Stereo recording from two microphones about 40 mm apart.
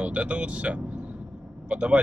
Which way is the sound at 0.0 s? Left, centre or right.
Right.